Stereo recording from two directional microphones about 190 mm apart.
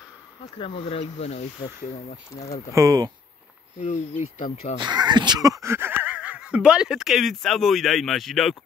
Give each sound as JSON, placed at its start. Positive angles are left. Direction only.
{"t": 0.6, "sound": "speech", "side_deg": 30}
{"t": 2.7, "sound": "speech", "side_deg": -15}
{"t": 3.8, "sound": "speech", "side_deg": 35}
{"t": 4.7, "sound": "speech", "side_deg": -20}